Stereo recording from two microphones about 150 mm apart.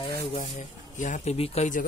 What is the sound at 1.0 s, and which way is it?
Speech, 50° left (ahead or behind).